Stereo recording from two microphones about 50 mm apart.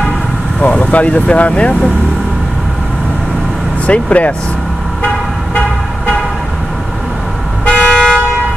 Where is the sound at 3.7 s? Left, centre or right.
Left.